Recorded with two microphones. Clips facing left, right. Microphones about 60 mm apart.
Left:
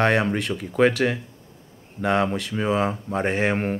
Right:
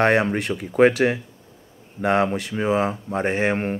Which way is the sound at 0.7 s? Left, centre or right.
Centre.